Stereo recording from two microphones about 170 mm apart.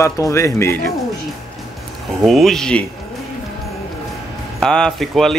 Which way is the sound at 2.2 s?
Centre (ahead or behind).